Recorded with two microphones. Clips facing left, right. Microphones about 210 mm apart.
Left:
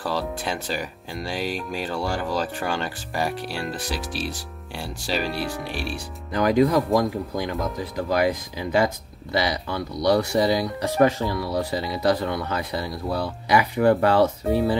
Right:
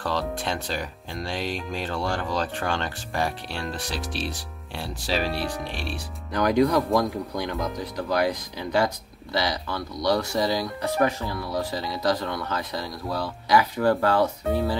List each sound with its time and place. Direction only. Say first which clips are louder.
0.0 s speech: left 1 dB; 5° left (ahead or behind); by 11.8 s 25° left (ahead or behind)
11.9 s speech: left 3 dB; 10° left (ahead or behind)